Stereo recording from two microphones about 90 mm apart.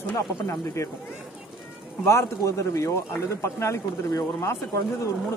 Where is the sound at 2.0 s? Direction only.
30° left (ahead or behind).